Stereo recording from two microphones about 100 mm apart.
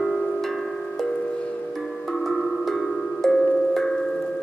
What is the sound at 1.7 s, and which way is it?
Music, centre (ahead or behind).